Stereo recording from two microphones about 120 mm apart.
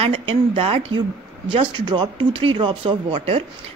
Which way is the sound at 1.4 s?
40° right (ahead or behind).